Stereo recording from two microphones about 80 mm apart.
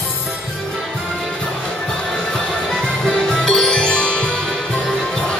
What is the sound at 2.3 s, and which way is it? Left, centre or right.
Music, centre.